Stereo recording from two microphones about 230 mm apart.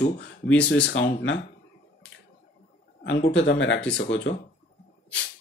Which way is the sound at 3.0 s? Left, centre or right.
Left.